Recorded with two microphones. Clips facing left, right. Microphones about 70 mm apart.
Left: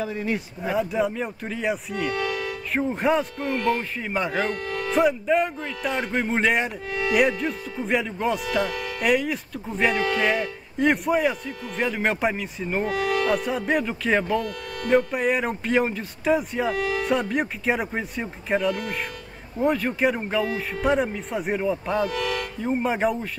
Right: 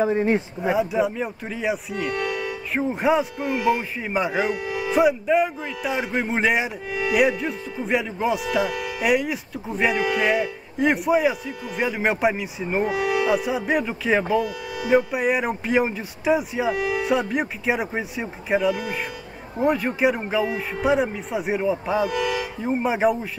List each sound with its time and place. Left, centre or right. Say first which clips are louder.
0.0 s speech: right 7 dB; right
0.6 s speech: right 3 dB; centre